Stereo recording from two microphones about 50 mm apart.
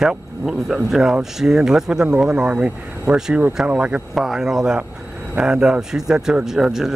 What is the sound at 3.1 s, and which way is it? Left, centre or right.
Speech, centre.